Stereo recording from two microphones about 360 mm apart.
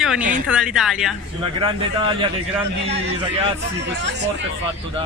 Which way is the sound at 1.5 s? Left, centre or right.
Centre.